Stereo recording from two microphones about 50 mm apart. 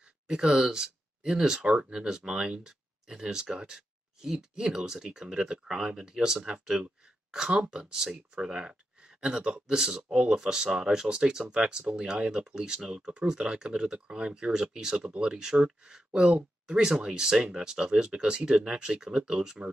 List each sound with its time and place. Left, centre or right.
0.3 s speech: centre